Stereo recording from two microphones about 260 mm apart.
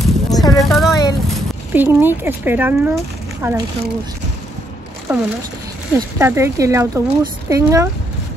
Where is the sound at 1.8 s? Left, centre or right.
Centre.